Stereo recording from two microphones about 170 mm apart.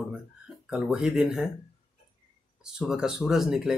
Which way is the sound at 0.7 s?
5° right (ahead or behind).